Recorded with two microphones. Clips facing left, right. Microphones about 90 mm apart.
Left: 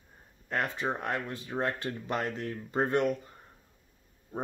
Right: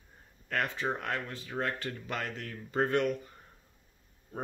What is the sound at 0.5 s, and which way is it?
Speech, 20° left (ahead or behind).